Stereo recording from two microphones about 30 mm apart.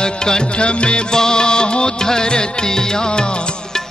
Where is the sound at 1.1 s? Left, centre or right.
Left.